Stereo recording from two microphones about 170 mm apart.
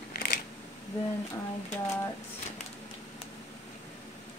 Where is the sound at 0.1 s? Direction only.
60° left (ahead or behind).